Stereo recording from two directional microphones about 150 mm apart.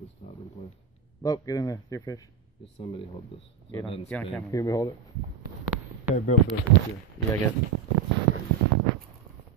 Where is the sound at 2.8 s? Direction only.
40° left (ahead or behind).